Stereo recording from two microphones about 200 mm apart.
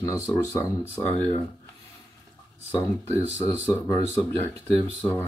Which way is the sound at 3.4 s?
15° left (ahead or behind).